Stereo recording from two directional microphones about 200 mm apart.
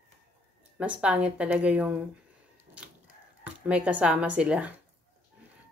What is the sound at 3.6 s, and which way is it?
Speech, 5° right (ahead or behind).